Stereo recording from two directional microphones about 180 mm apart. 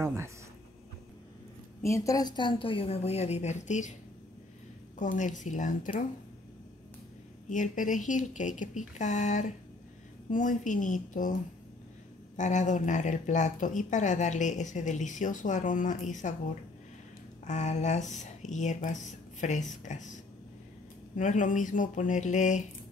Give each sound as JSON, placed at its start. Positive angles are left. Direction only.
{"t": 0.0, "sound": "speech", "side_deg": -15}
{"t": 1.8, "sound": "a woman's voice", "side_deg": 15}
{"t": 4.9, "sound": "speech", "side_deg": 45}
{"t": 7.4, "sound": "speech", "side_deg": 45}
{"t": 12.4, "sound": "speech", "side_deg": 45}
{"t": 17.5, "sound": "a woman's voice", "side_deg": 40}
{"t": 21.2, "sound": "speech", "side_deg": 45}